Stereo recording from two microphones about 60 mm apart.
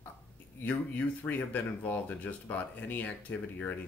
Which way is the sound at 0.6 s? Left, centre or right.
Left.